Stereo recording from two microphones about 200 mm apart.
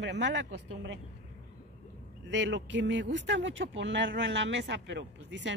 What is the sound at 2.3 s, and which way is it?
Speech, 65° right (ahead or behind).